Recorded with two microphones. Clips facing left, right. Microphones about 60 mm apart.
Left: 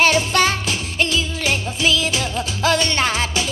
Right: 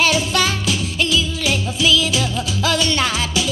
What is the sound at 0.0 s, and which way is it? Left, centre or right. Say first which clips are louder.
Music: left 2 dB; left.